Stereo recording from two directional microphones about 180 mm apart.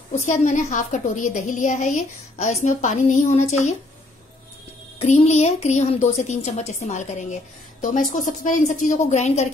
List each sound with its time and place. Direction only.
0.3 s a woman's voice: 45° left (ahead or behind)
4.9 s a woman's voice: 40° left (ahead or behind)